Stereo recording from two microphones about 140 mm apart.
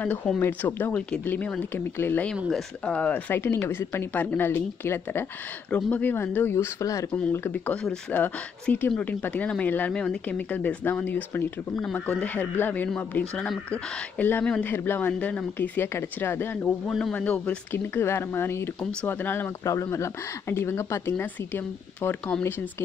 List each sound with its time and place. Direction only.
0.0 s speech: 10° left (ahead or behind)
7.1 s speech: 10° left (ahead or behind)